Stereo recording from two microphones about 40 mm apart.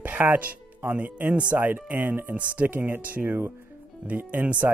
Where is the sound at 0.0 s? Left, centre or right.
Right.